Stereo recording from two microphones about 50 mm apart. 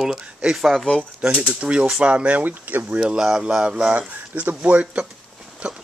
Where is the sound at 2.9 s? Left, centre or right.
Centre.